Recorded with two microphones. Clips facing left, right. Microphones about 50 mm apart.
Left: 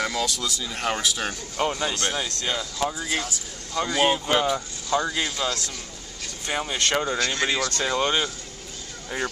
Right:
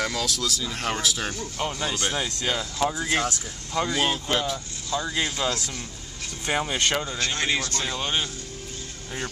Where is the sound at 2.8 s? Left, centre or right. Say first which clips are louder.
Right 3 dB; centre.